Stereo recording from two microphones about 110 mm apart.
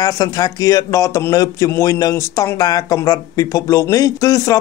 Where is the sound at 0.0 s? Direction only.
35° left (ahead or behind).